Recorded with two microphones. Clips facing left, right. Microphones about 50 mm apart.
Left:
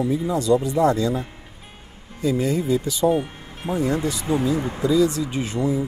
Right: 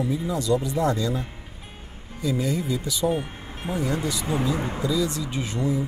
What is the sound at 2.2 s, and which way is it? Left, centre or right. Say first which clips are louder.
Speech: left 4 dB; left.